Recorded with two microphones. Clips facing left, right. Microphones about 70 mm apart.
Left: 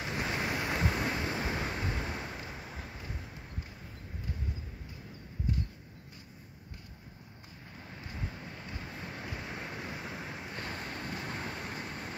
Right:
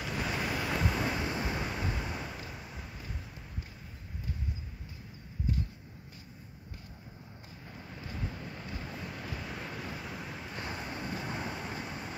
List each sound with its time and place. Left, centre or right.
0.0 s vehicle: left; by 2.3 s centre
2.6 s rain: left
2.9 s vehicle: left
8.1 s vehicle: left
9.3 s vehicle: centre
10.5 s vehicle: centre